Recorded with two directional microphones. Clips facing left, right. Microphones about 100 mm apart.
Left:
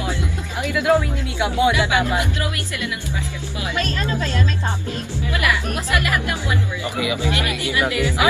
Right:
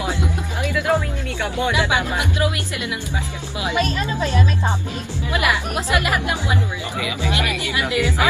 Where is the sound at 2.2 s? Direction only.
20° right (ahead or behind).